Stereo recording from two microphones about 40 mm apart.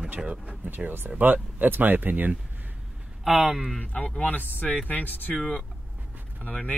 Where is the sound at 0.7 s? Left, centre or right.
Right.